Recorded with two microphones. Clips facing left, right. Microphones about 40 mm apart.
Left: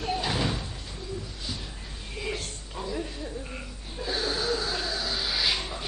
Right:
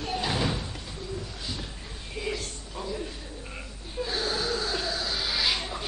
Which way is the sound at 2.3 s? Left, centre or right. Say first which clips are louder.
Right 1 dB; centre.